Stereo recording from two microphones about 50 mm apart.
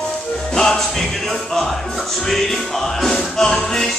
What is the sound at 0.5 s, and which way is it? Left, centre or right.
Music, centre.